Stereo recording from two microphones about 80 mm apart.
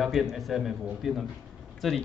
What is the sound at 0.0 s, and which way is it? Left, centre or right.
A man's voice, centre.